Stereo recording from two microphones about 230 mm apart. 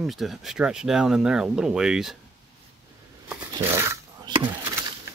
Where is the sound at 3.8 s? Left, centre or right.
Centre.